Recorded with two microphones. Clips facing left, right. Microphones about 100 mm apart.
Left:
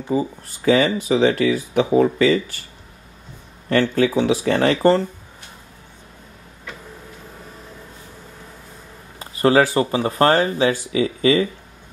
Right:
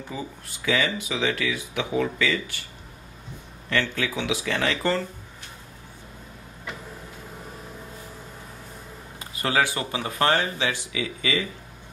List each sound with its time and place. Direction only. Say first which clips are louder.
0.1 s speech: left 16 dB; 40° left (ahead or behind)
3.6 s speech: left 9 dB; 40° left (ahead or behind)
9.2 s speech: left 9 dB; 35° left (ahead or behind)